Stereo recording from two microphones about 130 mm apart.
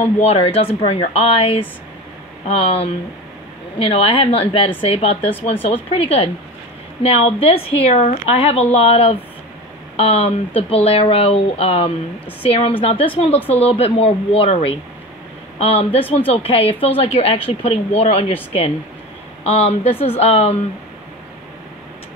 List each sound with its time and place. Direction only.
0.2 s speech: 55° left (ahead or behind)
13.4 s speech: 15° left (ahead or behind)
13.7 s speech: 50° left (ahead or behind)